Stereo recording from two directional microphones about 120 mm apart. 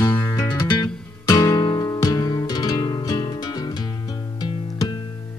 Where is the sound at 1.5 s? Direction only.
40° left (ahead or behind).